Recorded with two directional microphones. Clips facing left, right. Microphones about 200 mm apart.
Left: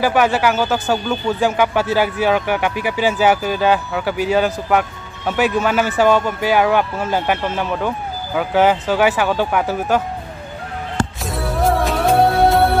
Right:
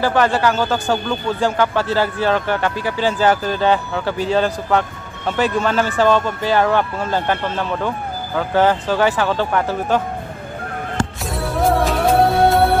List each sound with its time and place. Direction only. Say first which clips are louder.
0.0 s speech: left 1 dB; 10° left (ahead or behind)
11.2 s music: right 1 dB; centre (ahead or behind)